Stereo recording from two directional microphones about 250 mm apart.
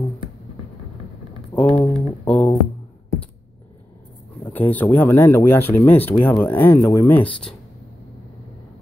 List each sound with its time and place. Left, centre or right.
1.7 s speech: left
2.2 s speech: centre
4.6 s speech: centre